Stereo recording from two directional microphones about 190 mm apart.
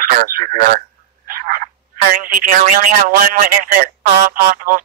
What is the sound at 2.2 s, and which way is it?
A man's voice, 45° right (ahead or behind).